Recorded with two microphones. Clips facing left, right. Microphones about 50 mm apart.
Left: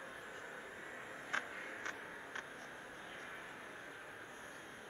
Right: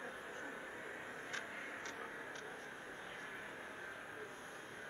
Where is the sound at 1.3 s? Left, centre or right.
Left.